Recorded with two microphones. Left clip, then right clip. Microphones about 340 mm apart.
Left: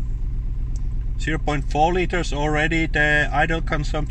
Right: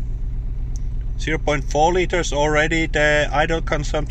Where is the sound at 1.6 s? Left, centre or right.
Centre.